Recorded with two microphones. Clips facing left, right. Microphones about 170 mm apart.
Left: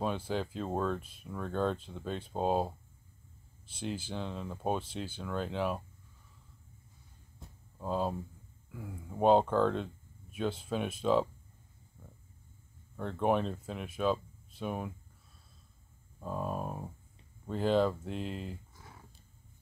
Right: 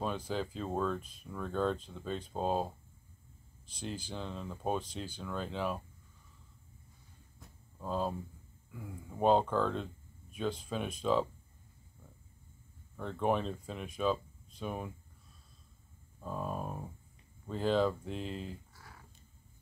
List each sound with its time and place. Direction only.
0.0 s speech: 5° left (ahead or behind)
7.8 s speech: 5° left (ahead or behind)
13.2 s speech: 5° left (ahead or behind)
16.2 s speech: 5° left (ahead or behind)
18.8 s a sound: 20° left (ahead or behind)